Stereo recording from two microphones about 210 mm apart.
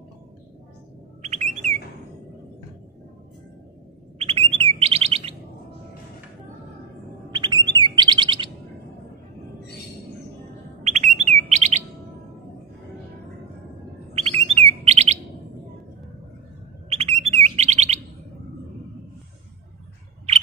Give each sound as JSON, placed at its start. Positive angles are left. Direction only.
{"t": 1.2, "sound": "bird", "side_deg": -35}
{"t": 4.2, "sound": "chirp", "side_deg": -25}
{"t": 7.2, "sound": "chirp", "side_deg": -20}
{"t": 10.8, "sound": "bird", "side_deg": -35}
{"t": 14.1, "sound": "bird", "side_deg": -30}
{"t": 16.9, "sound": "bird", "side_deg": -30}